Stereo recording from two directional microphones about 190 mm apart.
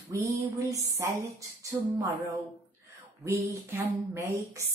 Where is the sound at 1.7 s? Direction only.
20° right (ahead or behind).